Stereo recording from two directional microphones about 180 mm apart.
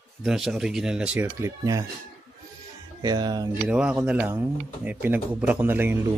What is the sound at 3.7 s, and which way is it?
A man's voice, 5° right (ahead or behind).